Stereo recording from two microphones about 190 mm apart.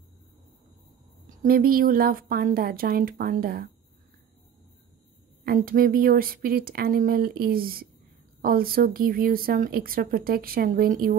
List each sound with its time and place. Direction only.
1.4 s a woman's voice: 50° right (ahead or behind)
5.4 s a woman's voice: 50° right (ahead or behind)